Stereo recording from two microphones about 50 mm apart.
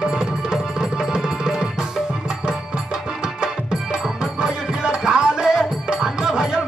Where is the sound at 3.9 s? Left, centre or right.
Centre.